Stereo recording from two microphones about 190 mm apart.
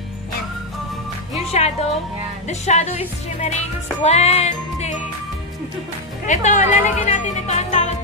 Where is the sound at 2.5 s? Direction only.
35° left (ahead or behind).